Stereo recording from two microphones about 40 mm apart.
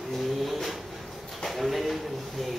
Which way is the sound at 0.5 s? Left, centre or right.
Centre.